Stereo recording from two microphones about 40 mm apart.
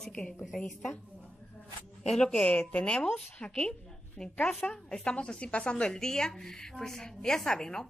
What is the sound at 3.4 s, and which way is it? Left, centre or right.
A woman's voice, centre.